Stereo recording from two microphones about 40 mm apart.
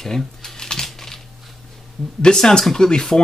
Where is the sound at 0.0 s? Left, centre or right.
Centre.